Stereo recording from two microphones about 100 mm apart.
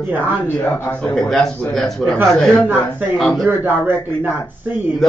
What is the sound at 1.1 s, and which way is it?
Speech, 5° left (ahead or behind).